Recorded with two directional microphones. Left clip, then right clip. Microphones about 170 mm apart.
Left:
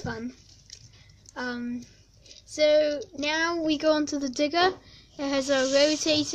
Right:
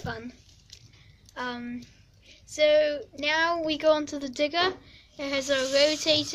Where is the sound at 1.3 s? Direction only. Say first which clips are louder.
Left 1 dB; 45° left (ahead or behind).